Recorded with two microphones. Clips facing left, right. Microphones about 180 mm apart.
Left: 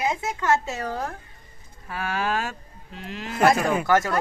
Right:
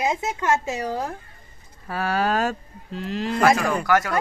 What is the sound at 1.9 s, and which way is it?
Speech, 35° right (ahead or behind).